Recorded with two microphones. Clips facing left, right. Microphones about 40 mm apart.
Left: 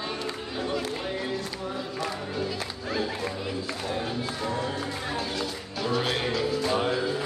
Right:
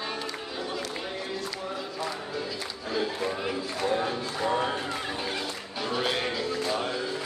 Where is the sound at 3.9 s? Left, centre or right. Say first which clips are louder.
Right 3 dB; centre.